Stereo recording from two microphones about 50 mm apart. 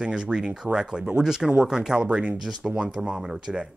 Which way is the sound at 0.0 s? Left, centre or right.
Centre.